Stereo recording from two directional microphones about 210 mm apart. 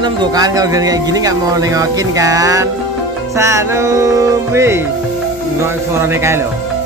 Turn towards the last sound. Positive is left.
turn(degrees=-10)  # may be behind; listen again after turning